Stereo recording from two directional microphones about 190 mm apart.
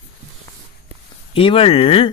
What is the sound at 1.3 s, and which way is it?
Speech, 30° left (ahead or behind).